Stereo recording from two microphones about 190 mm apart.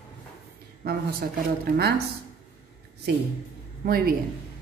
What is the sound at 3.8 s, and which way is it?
Speech, 50° right (ahead or behind).